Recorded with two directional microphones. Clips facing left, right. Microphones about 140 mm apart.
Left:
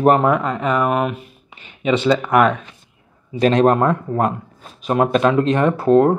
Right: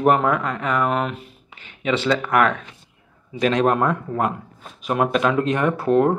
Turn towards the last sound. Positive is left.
turn(degrees=30)  # may be behind; listen again after turning